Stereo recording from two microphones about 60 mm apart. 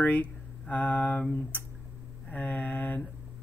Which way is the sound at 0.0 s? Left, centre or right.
Left.